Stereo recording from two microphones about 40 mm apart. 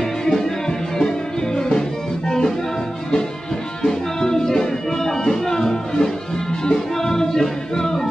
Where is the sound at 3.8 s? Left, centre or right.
Centre.